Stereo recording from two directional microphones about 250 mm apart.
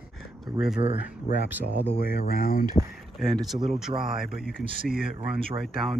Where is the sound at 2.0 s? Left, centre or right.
Left.